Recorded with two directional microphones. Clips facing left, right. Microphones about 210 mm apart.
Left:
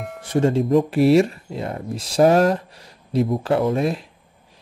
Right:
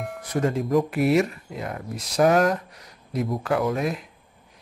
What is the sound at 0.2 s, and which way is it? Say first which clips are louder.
Speech: left 6 dB; 25° left (ahead or behind).